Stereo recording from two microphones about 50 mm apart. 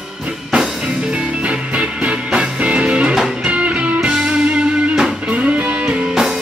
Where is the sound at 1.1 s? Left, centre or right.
Right.